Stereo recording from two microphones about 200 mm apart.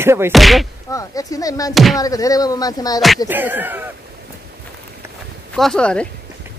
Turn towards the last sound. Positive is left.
turn(degrees=5)  # may be behind; listen again after turning